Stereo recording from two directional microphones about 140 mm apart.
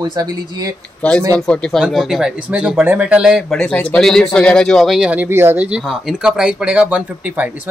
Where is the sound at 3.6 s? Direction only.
10° left (ahead or behind).